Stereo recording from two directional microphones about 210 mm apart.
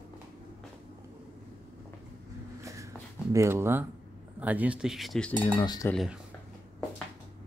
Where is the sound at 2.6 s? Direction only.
15° right (ahead or behind).